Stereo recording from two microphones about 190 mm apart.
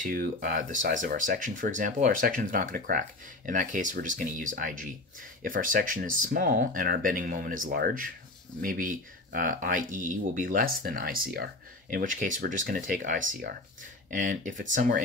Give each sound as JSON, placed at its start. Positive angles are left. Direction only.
{"t": 0.0, "sound": "speech", "side_deg": -45}